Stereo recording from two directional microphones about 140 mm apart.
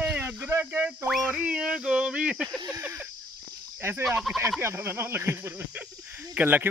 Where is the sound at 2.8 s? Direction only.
15° right (ahead or behind).